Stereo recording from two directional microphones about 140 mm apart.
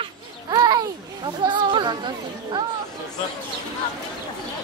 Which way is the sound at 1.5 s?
35° right (ahead or behind).